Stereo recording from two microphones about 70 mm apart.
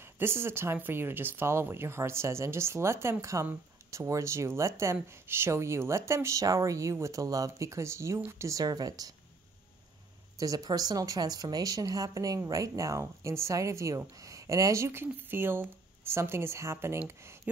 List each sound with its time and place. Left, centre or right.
0.0 s speech: right
8.5 s speech: right
10.4 s speech: right